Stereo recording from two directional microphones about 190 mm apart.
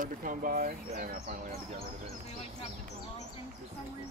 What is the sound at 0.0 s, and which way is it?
Speech, 45° right (ahead or behind).